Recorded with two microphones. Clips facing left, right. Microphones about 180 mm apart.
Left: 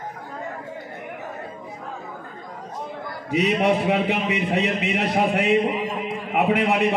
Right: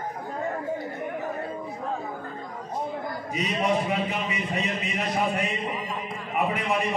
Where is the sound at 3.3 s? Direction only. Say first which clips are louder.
Left 6 dB; 70° left (ahead or behind).